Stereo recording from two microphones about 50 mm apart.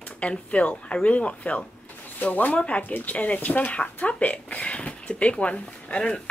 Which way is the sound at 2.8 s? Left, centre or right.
Left.